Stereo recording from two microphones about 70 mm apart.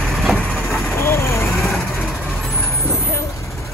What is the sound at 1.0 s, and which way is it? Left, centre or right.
Vehicle, left.